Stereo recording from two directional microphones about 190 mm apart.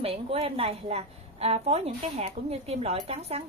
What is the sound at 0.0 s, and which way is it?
A woman's voice, 30° right (ahead or behind).